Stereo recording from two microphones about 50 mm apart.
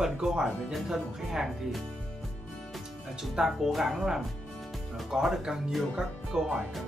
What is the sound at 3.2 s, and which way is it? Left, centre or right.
Speech, centre.